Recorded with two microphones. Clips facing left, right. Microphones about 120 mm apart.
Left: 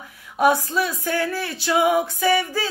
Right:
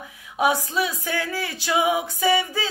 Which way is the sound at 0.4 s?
15° right (ahead or behind).